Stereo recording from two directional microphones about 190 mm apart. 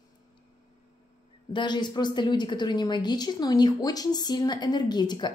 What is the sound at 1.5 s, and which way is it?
A woman's voice, 25° left (ahead or behind).